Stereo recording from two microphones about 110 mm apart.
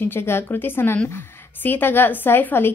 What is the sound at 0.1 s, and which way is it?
A woman's voice, 20° left (ahead or behind).